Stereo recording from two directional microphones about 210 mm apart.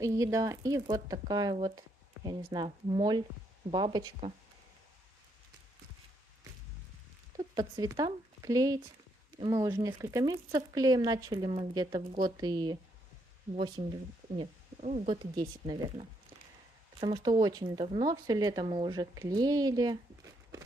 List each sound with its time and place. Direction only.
0.0 s speech: 15° right (ahead or behind)
7.5 s speech: 20° right (ahead or behind)